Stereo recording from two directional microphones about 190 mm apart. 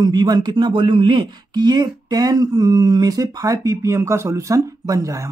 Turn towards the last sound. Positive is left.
turn(degrees=-15)  # may be behind; listen again after turning